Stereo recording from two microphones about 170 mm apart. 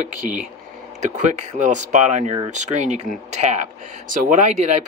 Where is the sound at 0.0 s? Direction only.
50° right (ahead or behind).